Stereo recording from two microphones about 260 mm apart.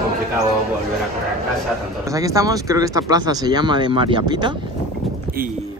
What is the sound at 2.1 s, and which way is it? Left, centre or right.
Speech, centre.